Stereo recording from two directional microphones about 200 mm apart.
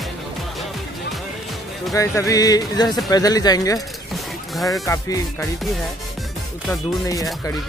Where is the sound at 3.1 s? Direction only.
20° left (ahead or behind).